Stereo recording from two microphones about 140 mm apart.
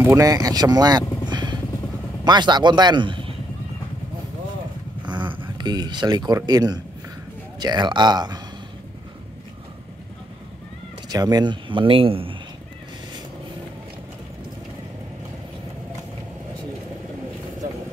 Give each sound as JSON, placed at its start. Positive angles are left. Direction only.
{"t": 0.0, "sound": "speech", "side_deg": -25}
{"t": 5.0, "sound": "a sound", "side_deg": -35}
{"t": 5.6, "sound": "speech", "side_deg": -30}
{"t": 11.1, "sound": "speech", "side_deg": -25}